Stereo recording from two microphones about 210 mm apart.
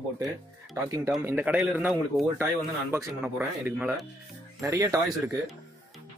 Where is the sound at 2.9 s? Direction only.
10° right (ahead or behind).